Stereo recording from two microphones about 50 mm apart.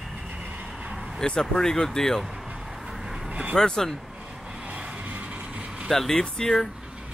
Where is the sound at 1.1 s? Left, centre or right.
Centre.